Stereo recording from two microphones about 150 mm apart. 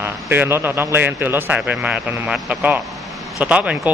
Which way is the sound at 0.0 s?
15° right (ahead or behind).